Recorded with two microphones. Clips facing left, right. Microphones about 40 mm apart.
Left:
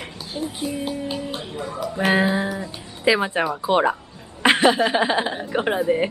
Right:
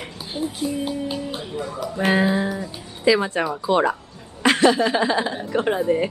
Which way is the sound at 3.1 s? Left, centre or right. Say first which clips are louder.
Even; left.